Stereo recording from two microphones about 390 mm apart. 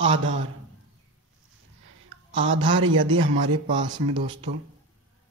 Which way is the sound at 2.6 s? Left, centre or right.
Centre.